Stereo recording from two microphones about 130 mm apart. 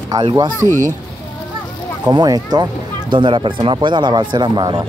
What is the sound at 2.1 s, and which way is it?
Speech, 30° right (ahead or behind).